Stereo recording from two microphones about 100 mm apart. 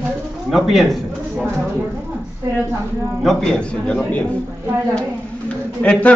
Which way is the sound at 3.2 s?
5° left (ahead or behind).